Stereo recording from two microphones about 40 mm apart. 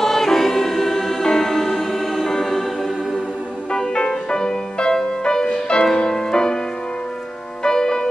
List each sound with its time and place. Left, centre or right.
0.0 s music: centre
3.7 s music: centre
7.6 s music: centre